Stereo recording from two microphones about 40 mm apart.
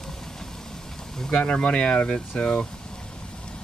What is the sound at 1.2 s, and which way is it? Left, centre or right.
Speech, left.